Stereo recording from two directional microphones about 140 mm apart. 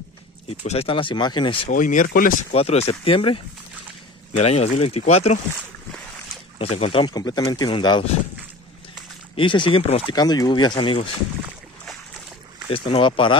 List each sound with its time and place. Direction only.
0.7 s speech: 45° left (ahead or behind)
1.7 s speech: 70° left (ahead or behind); by 2.3 s 90° left
2.5 s speech: 45° left (ahead or behind)
4.4 s speech: 50° left (ahead or behind)
6.6 s speech: 45° left (ahead or behind)
9.4 s speech: 35° left (ahead or behind)
10.1 s speech: 30° left (ahead or behind)
12.6 s speech: 40° left (ahead or behind)